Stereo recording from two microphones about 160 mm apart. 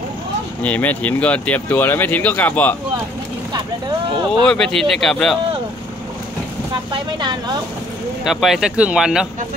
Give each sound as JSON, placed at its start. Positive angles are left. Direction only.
{"t": 0.6, "sound": "speech", "side_deg": 10}
{"t": 4.5, "sound": "speech", "side_deg": 5}
{"t": 6.9, "sound": "speech", "side_deg": -25}
{"t": 8.3, "sound": "speech", "side_deg": 0}